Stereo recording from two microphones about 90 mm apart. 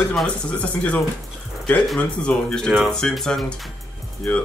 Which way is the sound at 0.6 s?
15° left (ahead or behind).